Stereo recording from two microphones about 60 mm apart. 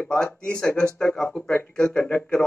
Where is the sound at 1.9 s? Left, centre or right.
Left.